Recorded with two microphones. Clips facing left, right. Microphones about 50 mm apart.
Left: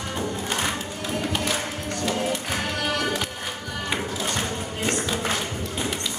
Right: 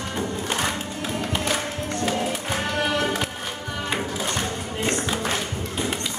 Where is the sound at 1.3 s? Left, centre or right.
Centre.